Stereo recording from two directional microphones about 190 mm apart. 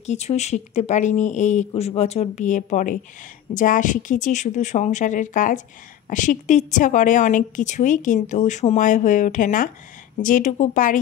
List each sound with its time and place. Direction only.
0.0 s a woman's voice: 35° left (ahead or behind)